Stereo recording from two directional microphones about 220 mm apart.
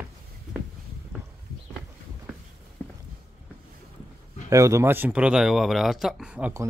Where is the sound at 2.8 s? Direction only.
5° left (ahead or behind).